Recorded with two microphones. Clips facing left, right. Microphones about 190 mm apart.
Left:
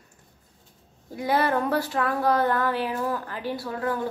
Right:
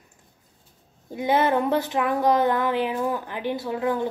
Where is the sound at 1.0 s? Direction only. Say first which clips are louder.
Right 2 dB; 20° right (ahead or behind).